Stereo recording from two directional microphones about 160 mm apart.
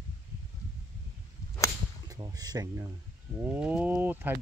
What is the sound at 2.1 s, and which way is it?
Speech, 25° right (ahead or behind).